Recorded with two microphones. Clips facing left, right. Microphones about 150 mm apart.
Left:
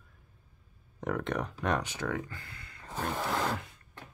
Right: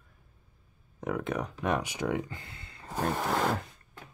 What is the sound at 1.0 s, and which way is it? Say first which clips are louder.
Speech: right 1 dB; 5° right (ahead or behind).